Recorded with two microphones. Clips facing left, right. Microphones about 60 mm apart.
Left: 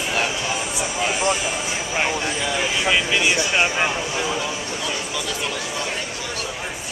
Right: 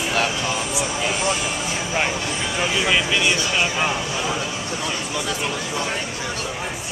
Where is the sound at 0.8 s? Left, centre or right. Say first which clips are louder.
Even; centre.